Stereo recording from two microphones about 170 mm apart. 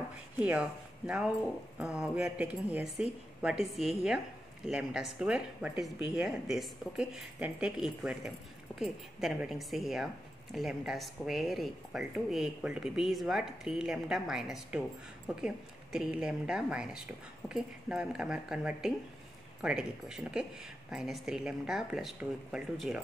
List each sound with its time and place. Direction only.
0.4 s speech: 5° right (ahead or behind)